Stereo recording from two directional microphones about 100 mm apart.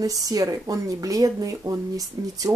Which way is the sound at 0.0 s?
35° right (ahead or behind).